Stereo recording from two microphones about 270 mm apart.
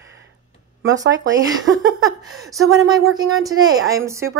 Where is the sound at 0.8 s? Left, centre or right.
Right.